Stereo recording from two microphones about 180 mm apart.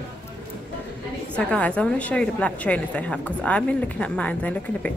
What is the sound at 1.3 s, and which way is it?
A woman's voice, 5° left (ahead or behind).